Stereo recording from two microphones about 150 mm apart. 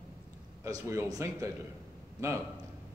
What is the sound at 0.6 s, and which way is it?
Speech, 20° right (ahead or behind).